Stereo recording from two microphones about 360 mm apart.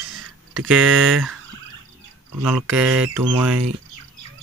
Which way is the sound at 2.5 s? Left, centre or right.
Centre.